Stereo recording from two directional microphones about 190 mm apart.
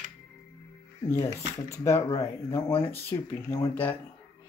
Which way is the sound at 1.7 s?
15° left (ahead or behind).